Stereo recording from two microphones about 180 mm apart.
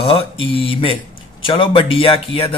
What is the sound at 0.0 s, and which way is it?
Speech, 30° left (ahead or behind).